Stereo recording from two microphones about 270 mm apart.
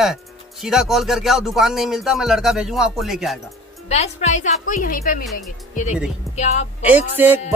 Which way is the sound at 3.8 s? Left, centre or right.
Left.